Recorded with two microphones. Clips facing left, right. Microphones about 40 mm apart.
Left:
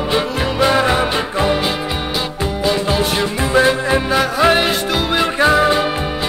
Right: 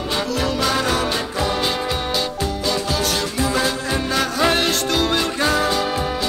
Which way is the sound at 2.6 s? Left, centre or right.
Left.